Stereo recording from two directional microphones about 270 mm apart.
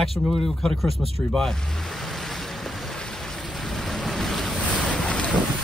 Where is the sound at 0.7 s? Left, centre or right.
Centre.